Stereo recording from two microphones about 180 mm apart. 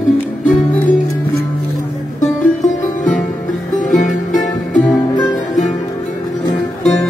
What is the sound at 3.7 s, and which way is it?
Music, 45° left (ahead or behind).